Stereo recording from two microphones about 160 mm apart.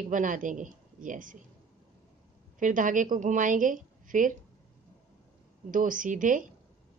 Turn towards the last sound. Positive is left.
turn(degrees=-55)  # may be behind; listen again after turning